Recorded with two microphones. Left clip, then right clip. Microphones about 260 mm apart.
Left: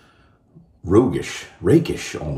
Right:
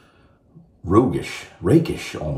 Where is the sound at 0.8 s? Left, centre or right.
Centre.